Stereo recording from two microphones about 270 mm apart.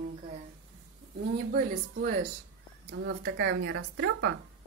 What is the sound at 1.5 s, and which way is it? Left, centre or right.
A woman's voice, right.